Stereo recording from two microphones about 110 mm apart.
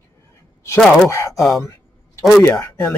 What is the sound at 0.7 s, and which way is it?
Speech, 5° left (ahead or behind).